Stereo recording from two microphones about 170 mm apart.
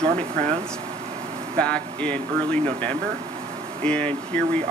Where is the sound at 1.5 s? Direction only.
5° left (ahead or behind).